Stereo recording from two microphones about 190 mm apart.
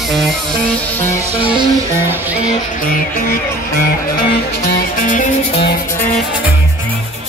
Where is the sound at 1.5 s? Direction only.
15° right (ahead or behind).